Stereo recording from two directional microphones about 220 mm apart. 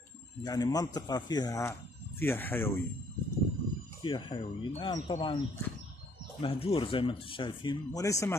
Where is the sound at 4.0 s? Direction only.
20° left (ahead or behind).